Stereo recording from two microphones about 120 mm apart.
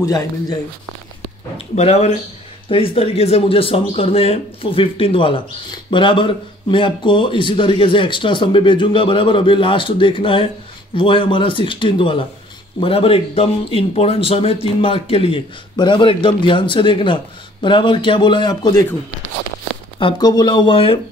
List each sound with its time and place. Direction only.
0.0 s speech: 30° left (ahead or behind)
1.8 s speech: 65° left (ahead or behind)
2.7 s speech: 50° left (ahead or behind)
15.7 s speech: 40° left (ahead or behind)
20.0 s speech: 40° left (ahead or behind)